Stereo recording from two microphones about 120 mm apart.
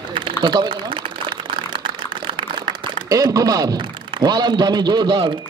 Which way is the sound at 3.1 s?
30° right (ahead or behind).